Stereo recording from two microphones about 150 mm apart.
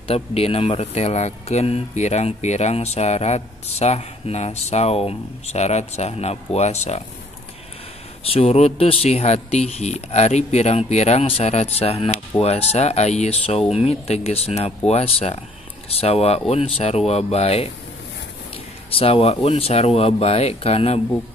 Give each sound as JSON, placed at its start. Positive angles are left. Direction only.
{"t": 0.1, "sound": "speech", "side_deg": 40}
{"t": 8.2, "sound": "speech", "side_deg": 40}
{"t": 18.9, "sound": "speech", "side_deg": 40}